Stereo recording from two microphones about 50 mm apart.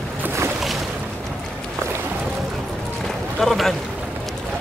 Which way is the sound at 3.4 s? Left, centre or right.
Centre.